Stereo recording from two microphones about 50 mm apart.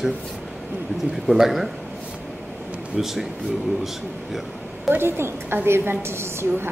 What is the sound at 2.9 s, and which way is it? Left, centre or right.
Speech, centre.